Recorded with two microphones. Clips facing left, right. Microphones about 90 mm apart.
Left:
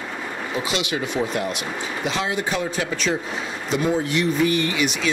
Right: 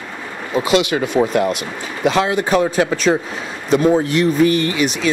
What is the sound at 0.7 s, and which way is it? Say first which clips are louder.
Speech: right 12 dB; 55° right (ahead or behind).